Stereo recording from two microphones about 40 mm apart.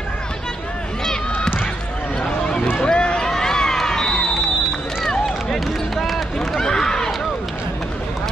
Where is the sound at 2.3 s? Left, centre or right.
Left; by 6.6 s centre.